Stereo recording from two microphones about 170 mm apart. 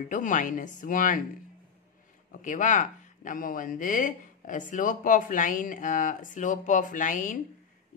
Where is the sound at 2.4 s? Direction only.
50° left (ahead or behind).